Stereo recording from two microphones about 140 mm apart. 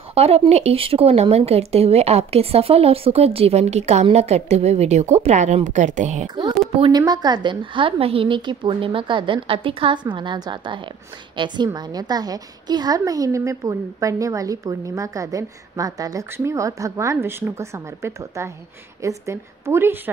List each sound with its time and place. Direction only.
0.1 s speech: 45° right (ahead or behind)
6.2 s a woman's voice: 30° right (ahead or behind)